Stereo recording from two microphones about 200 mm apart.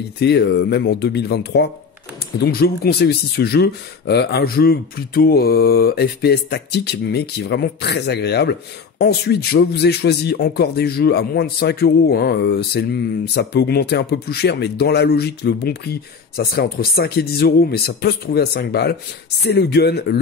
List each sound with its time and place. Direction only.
0.2 s speech: 55° left (ahead or behind)